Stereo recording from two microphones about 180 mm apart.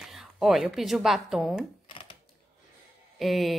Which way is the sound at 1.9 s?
30° left (ahead or behind).